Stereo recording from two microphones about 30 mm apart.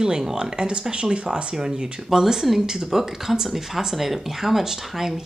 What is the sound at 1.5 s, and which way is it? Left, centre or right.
Speech, right.